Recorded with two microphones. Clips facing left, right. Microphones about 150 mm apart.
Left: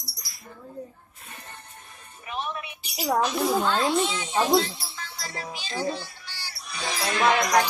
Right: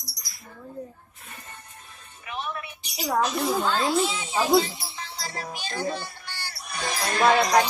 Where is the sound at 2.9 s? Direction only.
Centre (ahead or behind).